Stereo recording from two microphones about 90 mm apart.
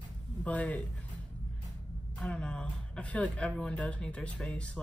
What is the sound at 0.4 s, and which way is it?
Speech, 15° left (ahead or behind).